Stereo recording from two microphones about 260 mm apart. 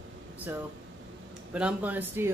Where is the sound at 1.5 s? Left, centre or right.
Centre.